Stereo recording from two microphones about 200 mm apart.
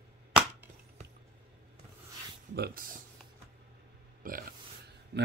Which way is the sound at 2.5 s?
50° right (ahead or behind).